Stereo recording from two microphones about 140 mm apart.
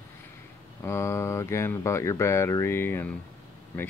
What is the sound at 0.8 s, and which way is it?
Speech, 20° left (ahead or behind).